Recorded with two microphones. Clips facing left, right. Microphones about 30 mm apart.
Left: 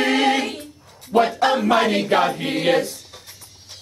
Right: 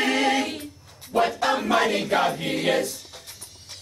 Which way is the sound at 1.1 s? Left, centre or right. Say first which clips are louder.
Left 5 dB; left.